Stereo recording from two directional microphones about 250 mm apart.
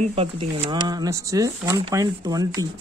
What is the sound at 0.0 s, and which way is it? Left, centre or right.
Speech, right.